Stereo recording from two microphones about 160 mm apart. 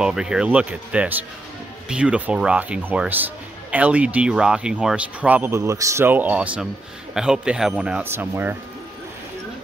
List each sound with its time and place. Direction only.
0.0 s speech: 5° right (ahead or behind)